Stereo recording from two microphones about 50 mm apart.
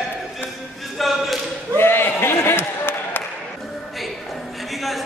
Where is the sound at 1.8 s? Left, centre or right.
Left.